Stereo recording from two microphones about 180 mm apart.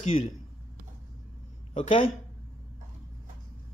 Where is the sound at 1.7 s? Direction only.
40° left (ahead or behind).